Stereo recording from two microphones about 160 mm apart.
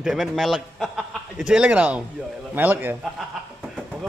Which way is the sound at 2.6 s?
10° right (ahead or behind).